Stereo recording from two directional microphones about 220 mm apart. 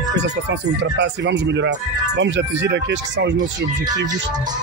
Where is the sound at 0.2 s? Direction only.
50° right (ahead or behind).